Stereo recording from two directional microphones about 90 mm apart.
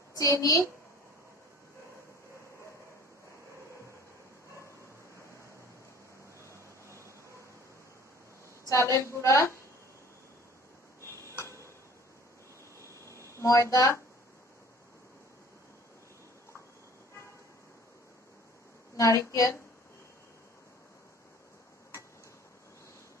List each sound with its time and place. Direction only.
0.4 s speech: 40° left (ahead or behind)
6.4 s a sound: 30° left (ahead or behind)
8.6 s a woman's voice: 35° left (ahead or behind)
11.0 s tick-tock: 30° left (ahead or behind)
12.8 s a sound: 30° left (ahead or behind)
18.9 s speech: 35° left (ahead or behind)